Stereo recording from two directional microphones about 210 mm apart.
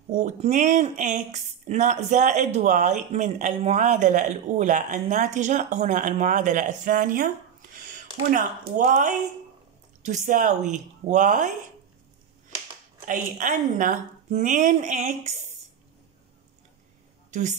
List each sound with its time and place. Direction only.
0.1 s speech: 35° right (ahead or behind)
8.3 s speech: 40° right (ahead or behind)
13.0 s speech: 40° right (ahead or behind)
17.3 s a woman's voice: 35° right (ahead or behind)